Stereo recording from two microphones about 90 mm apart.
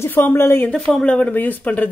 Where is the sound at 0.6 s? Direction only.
10° left (ahead or behind).